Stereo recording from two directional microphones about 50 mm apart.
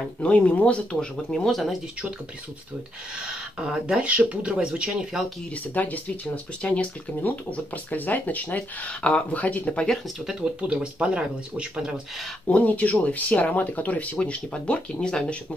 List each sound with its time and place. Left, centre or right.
0.2 s speech: left
1.5 s speech: centre
3.5 s speech: centre
4.0 s speech: right
5.5 s speech: left
7.2 s speech: left
10.0 s speech: centre
10.4 s speech: centre
12.4 s speech: left